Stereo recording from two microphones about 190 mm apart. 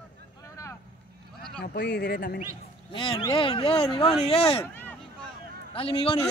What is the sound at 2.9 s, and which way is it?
Speech, 25° left (ahead or behind).